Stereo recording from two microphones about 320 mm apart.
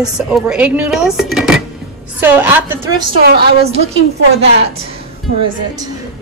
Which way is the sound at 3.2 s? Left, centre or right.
Right.